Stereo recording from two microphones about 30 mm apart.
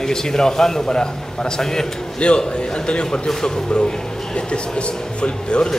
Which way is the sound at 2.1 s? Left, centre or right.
Left.